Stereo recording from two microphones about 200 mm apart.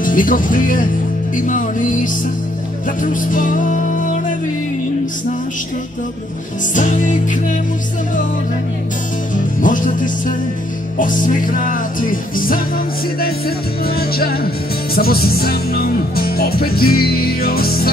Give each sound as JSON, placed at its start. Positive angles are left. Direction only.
{"t": 0.0, "sound": "music", "side_deg": 45}
{"t": 6.7, "sound": "music", "side_deg": 40}
{"t": 9.6, "sound": "music", "side_deg": 40}
{"t": 13.8, "sound": "music", "side_deg": 50}